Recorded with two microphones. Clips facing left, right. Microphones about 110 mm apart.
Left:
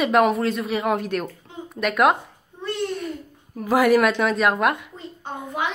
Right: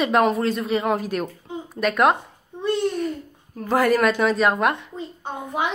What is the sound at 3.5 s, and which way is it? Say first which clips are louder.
A woman's voice: left 2 dB; 5° left (ahead or behind).